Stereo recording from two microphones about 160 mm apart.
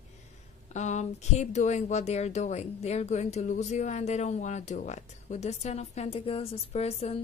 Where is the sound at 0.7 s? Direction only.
45° left (ahead or behind).